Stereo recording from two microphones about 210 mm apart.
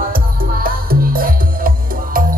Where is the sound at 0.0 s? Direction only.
45° right (ahead or behind).